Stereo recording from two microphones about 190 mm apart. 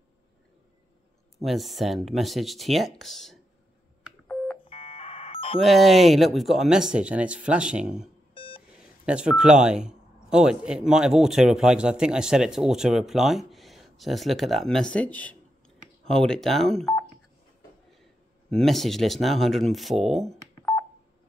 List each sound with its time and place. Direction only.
1.4 s speech: centre (ahead or behind)
4.6 s a sound: 30° left (ahead or behind)
5.6 s speech: centre (ahead or behind)
8.4 s beep: 30° left (ahead or behind)
9.0 s speech: 5° right (ahead or behind)
18.5 s speech: centre (ahead or behind)